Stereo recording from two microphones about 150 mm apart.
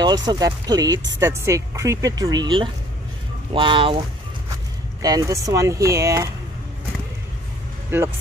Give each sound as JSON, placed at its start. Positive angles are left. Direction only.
{"t": 0.0, "sound": "speech", "side_deg": -30}
{"t": 5.0, "sound": "speech", "side_deg": -25}